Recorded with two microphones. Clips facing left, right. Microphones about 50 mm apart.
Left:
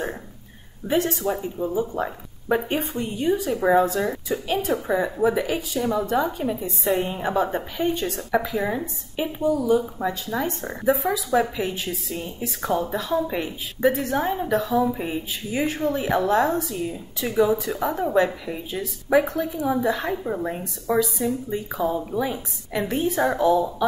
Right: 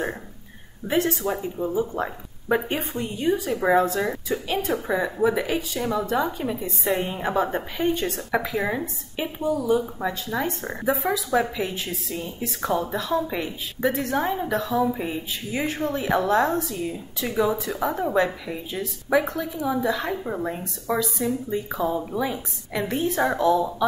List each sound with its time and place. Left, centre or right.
0.8 s a woman's voice: centre
19.5 s a woman's voice: centre
20.2 s a woman's voice: centre